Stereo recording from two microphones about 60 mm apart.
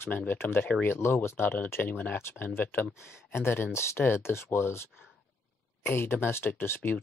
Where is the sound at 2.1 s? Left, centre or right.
Left.